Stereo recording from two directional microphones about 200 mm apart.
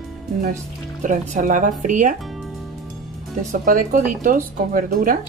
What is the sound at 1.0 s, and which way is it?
Speech, 40° right (ahead or behind).